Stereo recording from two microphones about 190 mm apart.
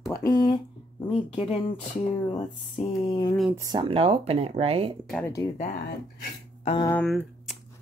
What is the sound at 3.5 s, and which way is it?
Speech, 20° right (ahead or behind).